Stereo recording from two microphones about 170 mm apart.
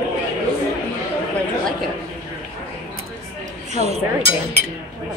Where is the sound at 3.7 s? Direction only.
40° right (ahead or behind).